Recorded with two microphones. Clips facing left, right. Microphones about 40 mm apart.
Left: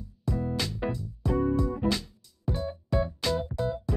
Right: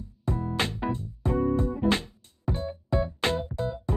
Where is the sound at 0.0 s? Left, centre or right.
Right.